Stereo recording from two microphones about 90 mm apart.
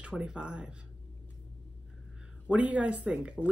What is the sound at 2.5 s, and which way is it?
Speech, 15° right (ahead or behind).